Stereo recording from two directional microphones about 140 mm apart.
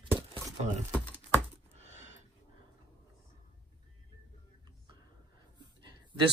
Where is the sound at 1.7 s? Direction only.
55° right (ahead or behind).